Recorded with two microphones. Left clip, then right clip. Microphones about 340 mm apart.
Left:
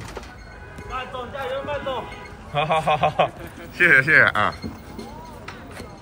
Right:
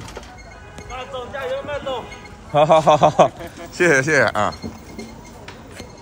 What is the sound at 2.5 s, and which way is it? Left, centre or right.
A man's voice, centre.